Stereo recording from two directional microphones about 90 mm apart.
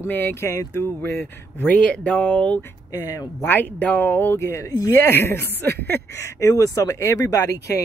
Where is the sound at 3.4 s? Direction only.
20° left (ahead or behind); by 5.0 s 35° left (ahead or behind).